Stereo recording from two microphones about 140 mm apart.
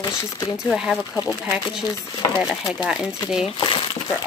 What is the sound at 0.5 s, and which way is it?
Speech, 5° right (ahead or behind).